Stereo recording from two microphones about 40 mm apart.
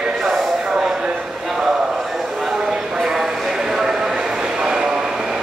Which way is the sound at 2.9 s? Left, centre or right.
Centre.